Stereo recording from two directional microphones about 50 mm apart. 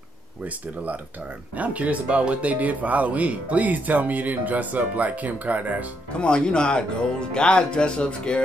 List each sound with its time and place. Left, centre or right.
1.6 s speech: right
6.1 s speech: centre